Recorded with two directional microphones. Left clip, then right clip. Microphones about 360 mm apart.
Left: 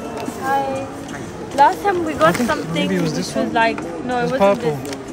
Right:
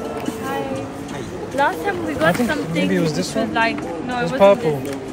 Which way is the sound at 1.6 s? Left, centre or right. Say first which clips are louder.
Left 5 dB; left.